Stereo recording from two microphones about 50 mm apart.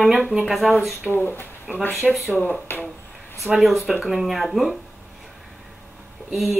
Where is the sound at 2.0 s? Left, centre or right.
Centre.